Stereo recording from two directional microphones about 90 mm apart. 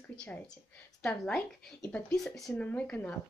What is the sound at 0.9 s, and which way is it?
Speech, 5° left (ahead or behind).